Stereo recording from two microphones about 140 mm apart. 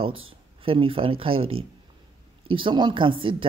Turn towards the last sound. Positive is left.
turn(degrees=-35)  # may be behind; listen again after turning